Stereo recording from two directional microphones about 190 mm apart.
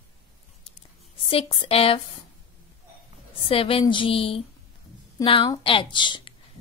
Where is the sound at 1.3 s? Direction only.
30° left (ahead or behind).